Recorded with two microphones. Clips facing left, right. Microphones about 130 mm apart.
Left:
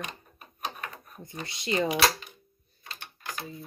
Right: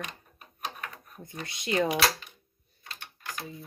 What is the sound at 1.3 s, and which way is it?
Speech, centre (ahead or behind).